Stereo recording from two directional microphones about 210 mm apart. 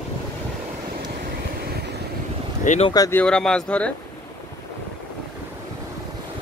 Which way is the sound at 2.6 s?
30° left (ahead or behind).